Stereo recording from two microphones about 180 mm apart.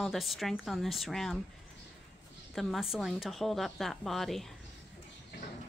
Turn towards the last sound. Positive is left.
turn(degrees=0)  # may be behind; listen again after turning